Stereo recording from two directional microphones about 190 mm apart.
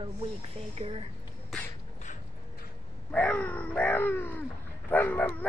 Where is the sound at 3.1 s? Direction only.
10° left (ahead or behind).